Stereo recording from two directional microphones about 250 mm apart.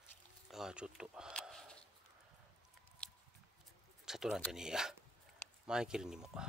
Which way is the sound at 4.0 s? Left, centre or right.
Centre.